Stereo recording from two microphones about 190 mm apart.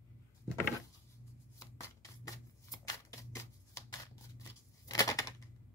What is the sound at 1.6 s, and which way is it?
Shuffling cards, 15° left (ahead or behind).